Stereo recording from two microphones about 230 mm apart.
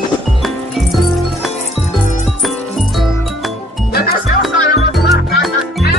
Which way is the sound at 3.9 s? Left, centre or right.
Left.